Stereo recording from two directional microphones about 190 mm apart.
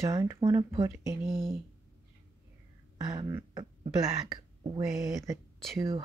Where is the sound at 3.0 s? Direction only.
20° right (ahead or behind).